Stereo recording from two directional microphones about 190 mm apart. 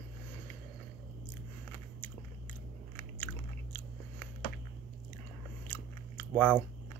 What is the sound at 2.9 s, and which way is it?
Biting, 10° left (ahead or behind).